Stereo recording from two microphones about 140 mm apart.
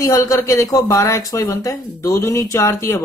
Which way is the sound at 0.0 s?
20° left (ahead or behind).